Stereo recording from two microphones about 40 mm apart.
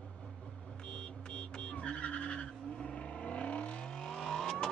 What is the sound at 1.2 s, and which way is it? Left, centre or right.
Music, left.